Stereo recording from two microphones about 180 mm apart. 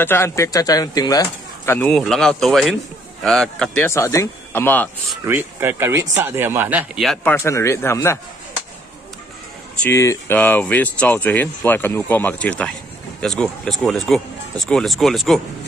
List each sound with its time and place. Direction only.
0.0 s speech: 15° left (ahead or behind)
1.7 s speech: 5° left (ahead or behind)
3.9 s speech: 15° left (ahead or behind)
5.2 s speech: 10° right (ahead or behind)
7.1 s speech: 10° left (ahead or behind)
9.8 s speech: 15° left (ahead or behind)